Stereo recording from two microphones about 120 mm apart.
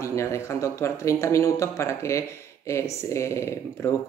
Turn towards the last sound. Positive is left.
turn(degrees=25)  # may be behind; listen again after turning